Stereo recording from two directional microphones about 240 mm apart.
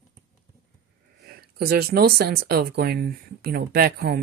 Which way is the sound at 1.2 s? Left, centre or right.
Right.